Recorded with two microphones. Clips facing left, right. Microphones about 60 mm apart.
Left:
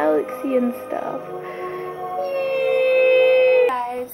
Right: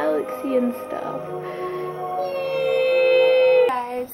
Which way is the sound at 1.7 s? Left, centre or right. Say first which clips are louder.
Even; left.